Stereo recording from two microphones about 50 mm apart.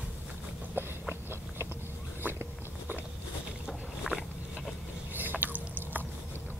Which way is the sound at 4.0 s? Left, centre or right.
Centre.